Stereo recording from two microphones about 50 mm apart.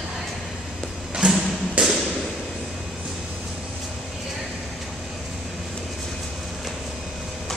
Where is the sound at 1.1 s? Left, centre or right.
Centre.